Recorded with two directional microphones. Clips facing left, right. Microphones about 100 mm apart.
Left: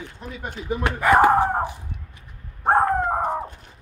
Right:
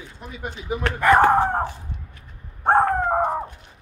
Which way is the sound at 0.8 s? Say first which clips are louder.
Even; 10° left (ahead or behind).